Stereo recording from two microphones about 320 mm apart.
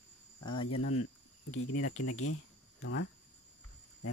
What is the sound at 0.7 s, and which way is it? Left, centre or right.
Speech, left.